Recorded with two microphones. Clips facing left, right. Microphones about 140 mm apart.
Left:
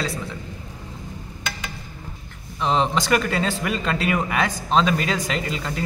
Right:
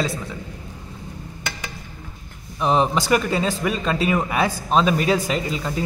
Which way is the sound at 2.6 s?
10° right (ahead or behind).